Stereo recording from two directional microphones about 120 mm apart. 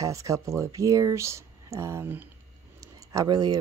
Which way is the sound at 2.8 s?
30° right (ahead or behind).